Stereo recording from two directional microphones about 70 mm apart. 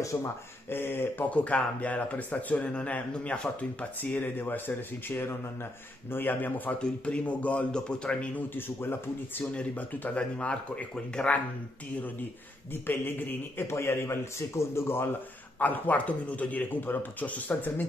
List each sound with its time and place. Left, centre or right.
0.0 s speech: left
0.7 s a man's voice: left
1.3 s a man's voice: centre
6.8 s a man's voice: centre
8.5 s a man's voice: left
9.5 s a man's voice: left
12.8 s a man's voice: left
13.7 s a man's voice: left
15.6 s a man's voice: left